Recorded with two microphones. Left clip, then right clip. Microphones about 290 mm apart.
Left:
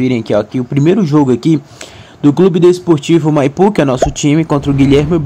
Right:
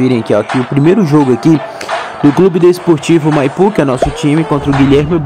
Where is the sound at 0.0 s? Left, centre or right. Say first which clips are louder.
Right 2 dB; centre.